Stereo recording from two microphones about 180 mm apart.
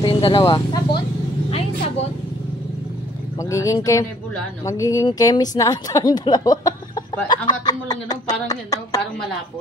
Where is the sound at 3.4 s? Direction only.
20° left (ahead or behind).